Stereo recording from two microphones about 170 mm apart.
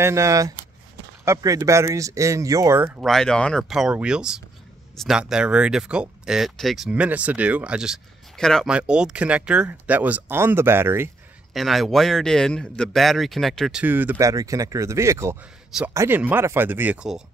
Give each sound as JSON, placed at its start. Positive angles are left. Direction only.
{"t": 0.0, "sound": "speech", "side_deg": -15}
{"t": 3.1, "sound": "speech", "side_deg": 5}
{"t": 11.5, "sound": "speech", "side_deg": 0}